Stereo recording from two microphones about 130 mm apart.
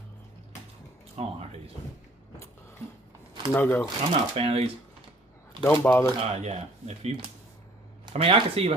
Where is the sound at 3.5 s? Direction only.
15° left (ahead or behind).